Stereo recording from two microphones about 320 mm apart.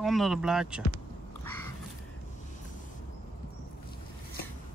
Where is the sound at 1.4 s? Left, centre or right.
Centre.